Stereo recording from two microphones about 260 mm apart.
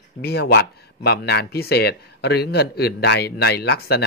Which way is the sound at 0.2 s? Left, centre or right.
Left.